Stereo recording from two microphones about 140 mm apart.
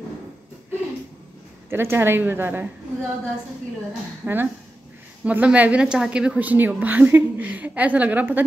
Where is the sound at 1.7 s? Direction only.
15° right (ahead or behind).